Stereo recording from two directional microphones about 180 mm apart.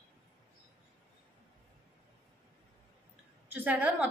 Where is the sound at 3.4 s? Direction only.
10° right (ahead or behind).